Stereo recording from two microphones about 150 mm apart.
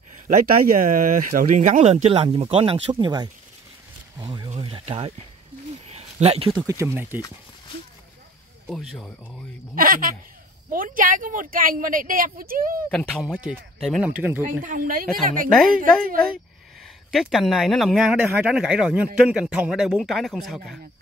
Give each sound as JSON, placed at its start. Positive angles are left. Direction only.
{"t": 0.1, "sound": "speech", "side_deg": -70}
{"t": 5.9, "sound": "a sound", "side_deg": -45}
{"t": 6.7, "sound": "speech", "side_deg": -20}
{"t": 8.6, "sound": "speech", "side_deg": 0}
{"t": 9.8, "sound": "a woman's voice", "side_deg": -70}
{"t": 13.2, "sound": "speech", "side_deg": -5}
{"t": 14.6, "sound": "a woman's voice", "side_deg": -65}
{"t": 16.8, "sound": "speech", "side_deg": 0}